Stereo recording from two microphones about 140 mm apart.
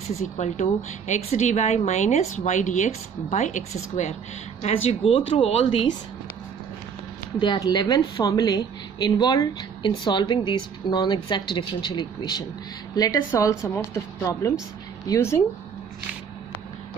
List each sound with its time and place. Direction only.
0.4 s a woman's voice: 55° left (ahead or behind); by 5.9 s 40° left (ahead or behind)
7.3 s a woman's voice: 30° left (ahead or behind)